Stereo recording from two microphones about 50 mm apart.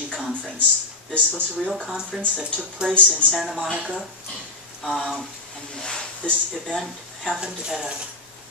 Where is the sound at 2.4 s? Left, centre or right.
Centre.